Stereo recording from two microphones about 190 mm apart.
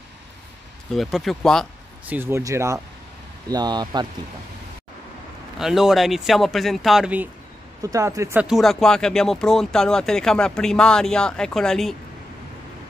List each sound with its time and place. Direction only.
0.9 s speech: centre (ahead or behind)
2.0 s speech: 10° right (ahead or behind)
5.6 s speech: centre (ahead or behind)
7.8 s speech: 15° right (ahead or behind); by 11.9 s centre (ahead or behind)